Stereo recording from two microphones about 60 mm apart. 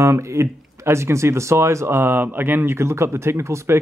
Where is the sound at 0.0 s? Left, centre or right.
Right.